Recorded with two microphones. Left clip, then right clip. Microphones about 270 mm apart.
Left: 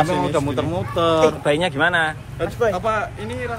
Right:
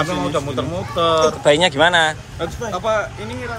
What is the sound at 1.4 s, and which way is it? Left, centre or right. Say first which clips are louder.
Speech: right 5 dB; centre.